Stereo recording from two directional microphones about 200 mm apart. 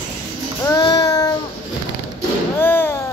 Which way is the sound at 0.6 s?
20° left (ahead or behind).